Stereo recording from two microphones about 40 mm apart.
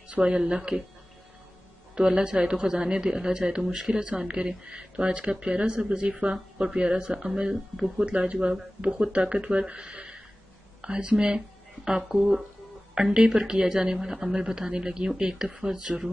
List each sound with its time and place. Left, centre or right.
0.1 s speech: right
2.0 s speech: right